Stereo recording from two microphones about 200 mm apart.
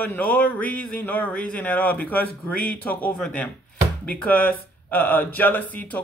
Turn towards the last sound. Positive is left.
turn(degrees=10)  # may be behind; listen again after turning